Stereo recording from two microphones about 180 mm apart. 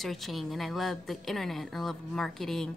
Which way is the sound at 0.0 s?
Centre (ahead or behind).